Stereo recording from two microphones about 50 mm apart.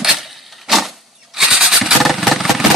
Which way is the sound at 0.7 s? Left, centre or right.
Centre.